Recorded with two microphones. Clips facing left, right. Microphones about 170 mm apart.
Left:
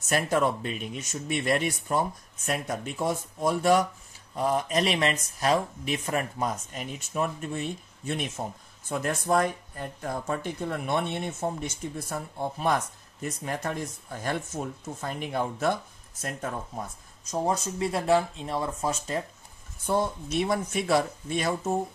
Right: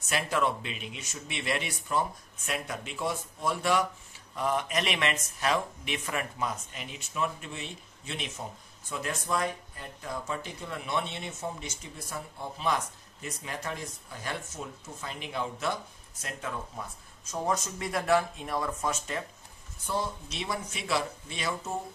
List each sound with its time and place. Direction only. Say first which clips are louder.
0.0 s speech: left 4 dB; 45° left (ahead or behind)
19.9 s speech: left 6 dB; 50° left (ahead or behind)